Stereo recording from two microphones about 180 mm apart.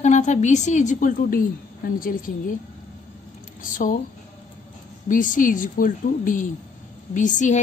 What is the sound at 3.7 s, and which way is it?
Speech, 50° left (ahead or behind).